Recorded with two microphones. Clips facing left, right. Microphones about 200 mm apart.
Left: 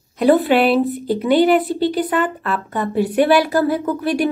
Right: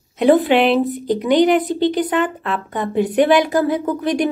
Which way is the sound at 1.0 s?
15° right (ahead or behind).